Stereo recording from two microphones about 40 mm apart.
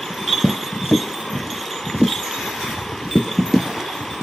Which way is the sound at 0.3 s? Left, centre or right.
Centre.